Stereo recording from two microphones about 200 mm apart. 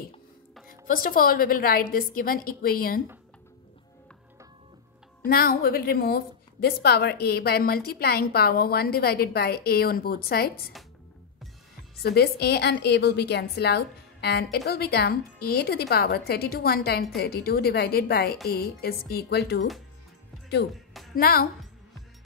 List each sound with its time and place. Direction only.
0.7 s a woman's voice: 45° left (ahead or behind)
5.2 s a woman's voice: 50° left (ahead or behind)
12.0 s a woman's voice: 50° left (ahead or behind)
21.1 s a woman's voice: 50° left (ahead or behind)